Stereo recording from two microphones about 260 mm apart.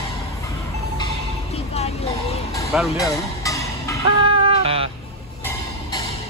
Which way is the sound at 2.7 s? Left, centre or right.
Centre.